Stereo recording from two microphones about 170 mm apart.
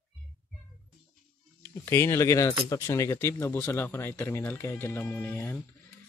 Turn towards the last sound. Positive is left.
turn(degrees=10)  # may be behind; listen again after turning